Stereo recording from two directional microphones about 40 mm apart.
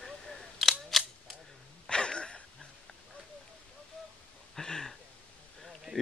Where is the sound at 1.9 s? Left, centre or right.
Left.